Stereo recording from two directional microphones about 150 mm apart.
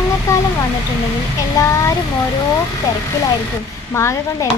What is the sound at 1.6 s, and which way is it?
Speech, 20° left (ahead or behind).